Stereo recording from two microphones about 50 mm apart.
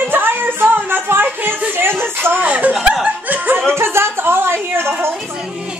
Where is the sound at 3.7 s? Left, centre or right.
Right.